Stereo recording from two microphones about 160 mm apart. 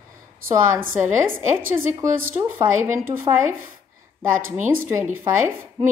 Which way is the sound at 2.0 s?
15° right (ahead or behind).